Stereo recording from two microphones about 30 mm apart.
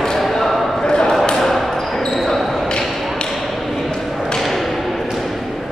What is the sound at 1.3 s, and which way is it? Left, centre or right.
Basketball bounce, centre.